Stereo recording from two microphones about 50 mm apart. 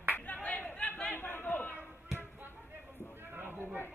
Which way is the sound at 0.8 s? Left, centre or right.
Left.